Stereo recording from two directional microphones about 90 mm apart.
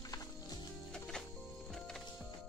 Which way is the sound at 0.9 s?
5° left (ahead or behind).